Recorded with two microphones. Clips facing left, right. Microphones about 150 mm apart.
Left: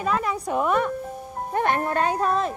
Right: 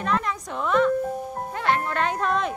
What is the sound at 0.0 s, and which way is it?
Speech, 5° left (ahead or behind).